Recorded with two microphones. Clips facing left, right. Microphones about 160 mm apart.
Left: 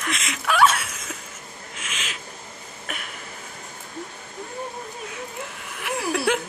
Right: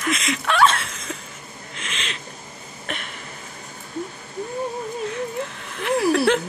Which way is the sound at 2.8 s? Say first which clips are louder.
Right 4 dB; 5° left (ahead or behind).